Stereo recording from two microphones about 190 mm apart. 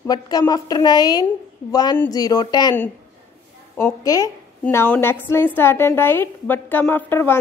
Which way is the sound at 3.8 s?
15° left (ahead or behind).